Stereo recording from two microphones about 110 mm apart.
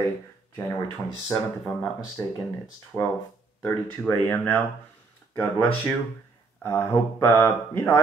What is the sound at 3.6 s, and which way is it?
Speech, 15° left (ahead or behind).